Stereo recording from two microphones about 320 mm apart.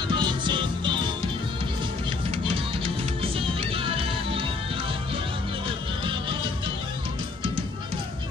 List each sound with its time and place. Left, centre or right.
0.1 s music: centre
2.4 s music: centre